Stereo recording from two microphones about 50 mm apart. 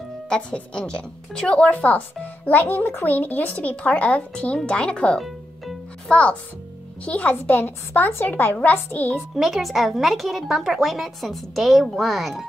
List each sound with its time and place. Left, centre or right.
0.3 s a woman's voice: centre; by 2.7 s left
2.9 s speech: left
3.2 s a woman's voice: left
7.4 s speech: left
9.3 s speech: centre